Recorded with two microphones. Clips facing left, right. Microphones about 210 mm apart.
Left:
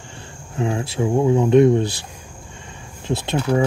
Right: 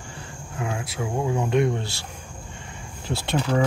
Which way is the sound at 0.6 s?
25° left (ahead or behind).